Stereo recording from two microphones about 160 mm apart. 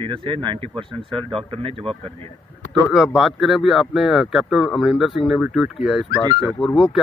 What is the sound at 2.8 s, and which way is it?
Speech, centre (ahead or behind).